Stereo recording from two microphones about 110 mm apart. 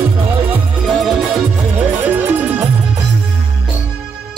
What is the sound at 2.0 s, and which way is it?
Music, 15° right (ahead or behind).